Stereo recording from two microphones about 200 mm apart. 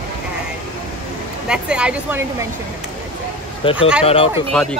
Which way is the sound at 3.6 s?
25° left (ahead or behind).